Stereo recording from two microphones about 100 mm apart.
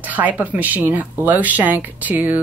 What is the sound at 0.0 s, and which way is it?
Speech, 15° right (ahead or behind).